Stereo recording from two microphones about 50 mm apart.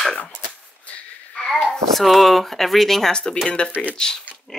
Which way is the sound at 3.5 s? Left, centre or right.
Left.